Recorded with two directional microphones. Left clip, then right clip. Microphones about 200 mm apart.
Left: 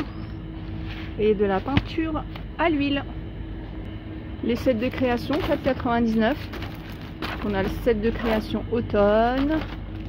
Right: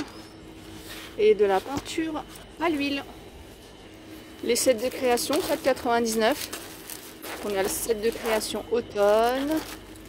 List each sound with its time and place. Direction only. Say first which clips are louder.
1.2 s speech: right 1 dB; 20° right (ahead or behind)
4.5 s speech: right 1 dB; 20° right (ahead or behind)
7.4 s speech: left 2 dB; 20° right (ahead or behind)